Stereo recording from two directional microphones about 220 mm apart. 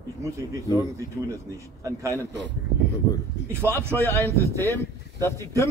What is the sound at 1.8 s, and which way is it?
Speech, 15° right (ahead or behind).